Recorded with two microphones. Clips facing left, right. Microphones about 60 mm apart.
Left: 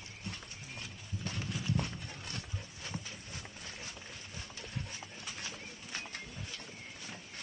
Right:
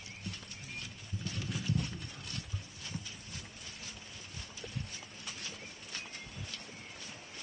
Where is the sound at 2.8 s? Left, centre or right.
Left.